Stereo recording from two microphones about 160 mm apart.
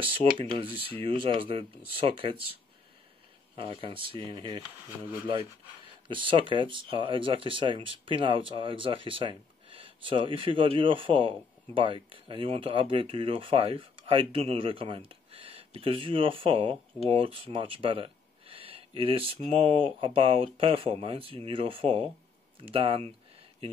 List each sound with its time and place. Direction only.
0.0 s speech: 35° right (ahead or behind)
5.0 s speech: 10° right (ahead or behind)
6.0 s speech: 30° right (ahead or behind)